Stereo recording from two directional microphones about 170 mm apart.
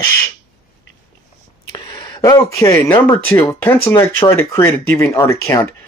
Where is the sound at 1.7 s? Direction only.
20° left (ahead or behind).